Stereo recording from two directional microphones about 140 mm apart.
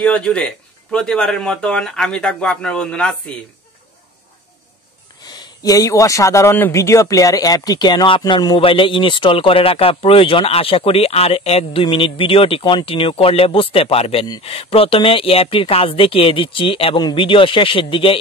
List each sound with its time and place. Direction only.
0.0 s speech: 5° left (ahead or behind)
5.2 s speech: 30° left (ahead or behind)